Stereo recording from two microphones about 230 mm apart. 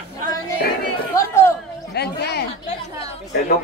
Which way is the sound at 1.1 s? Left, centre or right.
Centre.